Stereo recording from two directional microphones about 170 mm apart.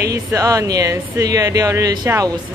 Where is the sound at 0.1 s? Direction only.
20° right (ahead or behind).